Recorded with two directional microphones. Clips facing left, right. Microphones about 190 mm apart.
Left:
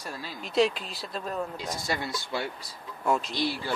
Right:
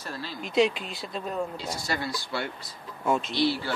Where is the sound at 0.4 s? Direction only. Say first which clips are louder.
Right 1 dB; centre (ahead or behind).